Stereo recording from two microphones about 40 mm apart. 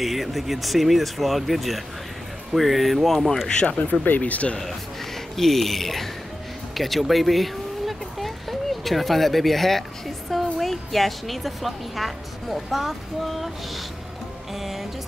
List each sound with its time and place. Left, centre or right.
0.0 s speech: centre
3.4 s speech: left
4.2 s speech: left
4.6 s speech: centre
14.5 s music: centre